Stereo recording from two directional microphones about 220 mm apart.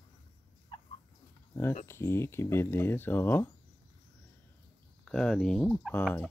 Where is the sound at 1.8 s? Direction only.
10° left (ahead or behind).